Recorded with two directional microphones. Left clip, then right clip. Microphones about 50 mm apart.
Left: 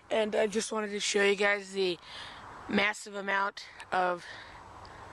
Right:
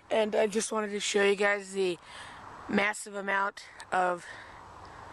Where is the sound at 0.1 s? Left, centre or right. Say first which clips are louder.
Right 2 dB; right.